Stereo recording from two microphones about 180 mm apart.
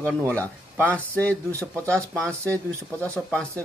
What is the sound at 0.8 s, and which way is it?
Speech, 5° left (ahead or behind).